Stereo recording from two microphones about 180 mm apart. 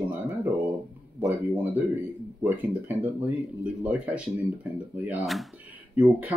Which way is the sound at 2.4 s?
10° right (ahead or behind).